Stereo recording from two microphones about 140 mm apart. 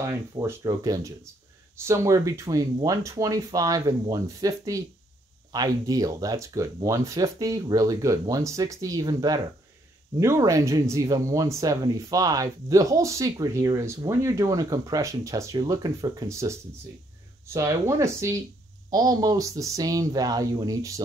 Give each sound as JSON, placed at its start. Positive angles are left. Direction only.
{"t": 0.0, "sound": "speech", "side_deg": -20}